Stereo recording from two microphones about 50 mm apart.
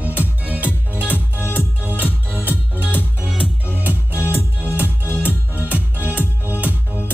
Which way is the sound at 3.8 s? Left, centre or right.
Right.